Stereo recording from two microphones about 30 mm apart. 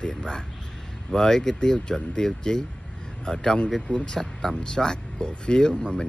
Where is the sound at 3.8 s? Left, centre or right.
Left.